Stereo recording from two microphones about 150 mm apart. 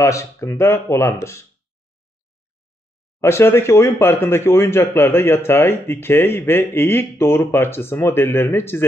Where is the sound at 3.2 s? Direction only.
15° left (ahead or behind).